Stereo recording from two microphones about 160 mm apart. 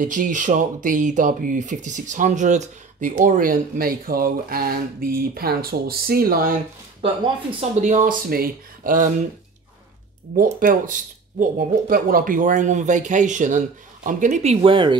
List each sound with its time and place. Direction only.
0.0 s speech: 55° right (ahead or behind)
7.0 s speech: 35° right (ahead or behind)
7.8 s speech: 55° right (ahead or behind)
10.3 s speech: 60° right (ahead or behind); by 15.0 s 30° right (ahead or behind)